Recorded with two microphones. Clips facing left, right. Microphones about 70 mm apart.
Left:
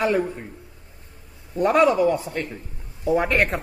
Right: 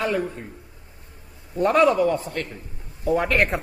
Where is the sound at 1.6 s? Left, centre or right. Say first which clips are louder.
Even; centre.